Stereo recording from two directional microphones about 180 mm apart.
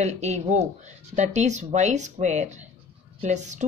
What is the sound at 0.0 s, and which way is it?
A woman's voice, 40° right (ahead or behind).